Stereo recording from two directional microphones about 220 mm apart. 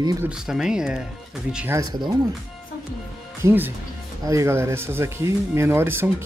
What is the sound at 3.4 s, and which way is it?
Speech, 10° right (ahead or behind).